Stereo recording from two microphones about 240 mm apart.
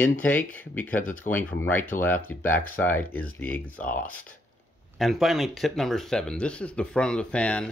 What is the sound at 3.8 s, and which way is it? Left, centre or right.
Speech, left.